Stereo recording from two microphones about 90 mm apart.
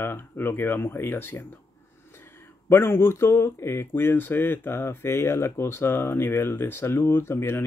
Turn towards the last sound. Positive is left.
turn(degrees=30)  # may be behind; listen again after turning